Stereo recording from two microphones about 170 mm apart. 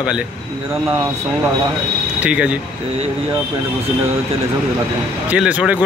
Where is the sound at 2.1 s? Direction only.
5° right (ahead or behind).